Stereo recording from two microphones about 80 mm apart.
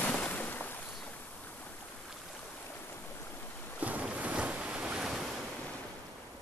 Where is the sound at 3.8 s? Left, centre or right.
Centre.